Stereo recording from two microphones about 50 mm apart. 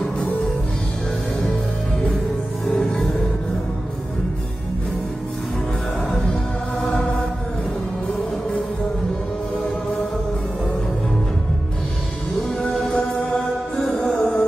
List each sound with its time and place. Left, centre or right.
6.0 s music: left
12.4 s music: centre